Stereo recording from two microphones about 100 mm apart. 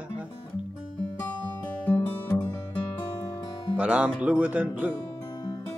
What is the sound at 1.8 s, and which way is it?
Music, 15° left (ahead or behind).